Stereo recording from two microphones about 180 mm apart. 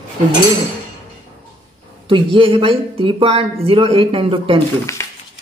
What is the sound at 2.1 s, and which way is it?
Speech, 30° right (ahead or behind).